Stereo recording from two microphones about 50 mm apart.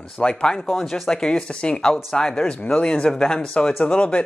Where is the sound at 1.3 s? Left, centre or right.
Centre.